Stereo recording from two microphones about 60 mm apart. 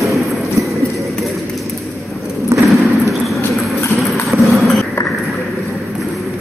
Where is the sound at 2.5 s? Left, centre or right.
Right.